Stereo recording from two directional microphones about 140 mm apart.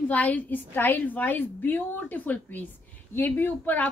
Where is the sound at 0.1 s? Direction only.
10° left (ahead or behind).